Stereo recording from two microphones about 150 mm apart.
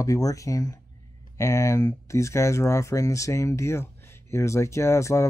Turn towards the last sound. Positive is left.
turn(degrees=20)  # may be behind; listen again after turning